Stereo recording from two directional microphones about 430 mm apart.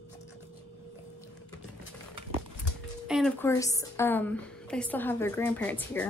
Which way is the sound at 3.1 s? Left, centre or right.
Centre.